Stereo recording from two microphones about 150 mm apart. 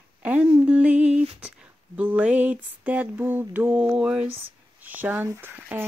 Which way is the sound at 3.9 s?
5° right (ahead or behind).